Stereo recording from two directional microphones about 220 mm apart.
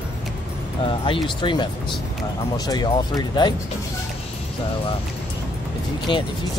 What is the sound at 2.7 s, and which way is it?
Speech, 15° left (ahead or behind).